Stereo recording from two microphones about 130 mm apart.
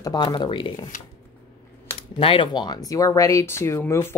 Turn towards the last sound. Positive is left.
turn(degrees=20)  # may be behind; listen again after turning